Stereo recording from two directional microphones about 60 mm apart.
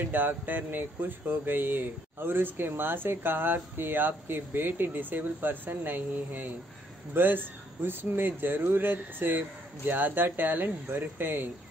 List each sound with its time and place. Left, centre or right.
0.0 s speech: right